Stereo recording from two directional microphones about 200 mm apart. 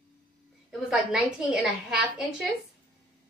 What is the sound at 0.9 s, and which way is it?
A woman's voice, 5° right (ahead or behind).